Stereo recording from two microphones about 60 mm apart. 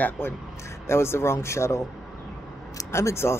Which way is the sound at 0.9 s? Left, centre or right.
Left.